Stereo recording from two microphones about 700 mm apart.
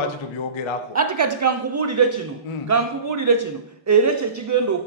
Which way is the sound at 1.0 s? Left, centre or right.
Right.